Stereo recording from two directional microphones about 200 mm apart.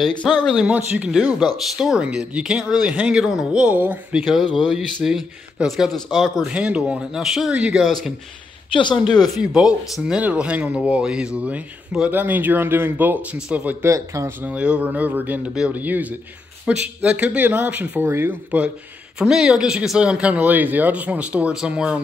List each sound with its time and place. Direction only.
0.2 s speech: centre (ahead or behind)
8.7 s speech: 25° left (ahead or behind)
9.3 s speech: 5° right (ahead or behind)